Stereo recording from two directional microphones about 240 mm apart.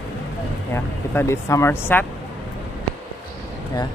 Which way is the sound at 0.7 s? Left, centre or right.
Centre.